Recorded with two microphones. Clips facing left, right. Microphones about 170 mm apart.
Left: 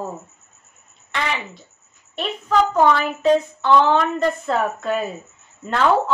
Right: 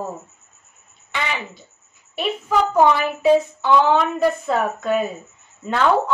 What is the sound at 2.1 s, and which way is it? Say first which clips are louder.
Speech: even; 5° right (ahead or behind).